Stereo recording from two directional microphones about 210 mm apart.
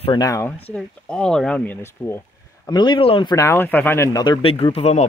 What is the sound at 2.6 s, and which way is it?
Speech, 20° left (ahead or behind).